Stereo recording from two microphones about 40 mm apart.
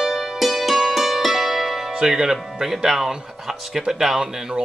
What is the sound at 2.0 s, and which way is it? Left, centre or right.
Speech, centre.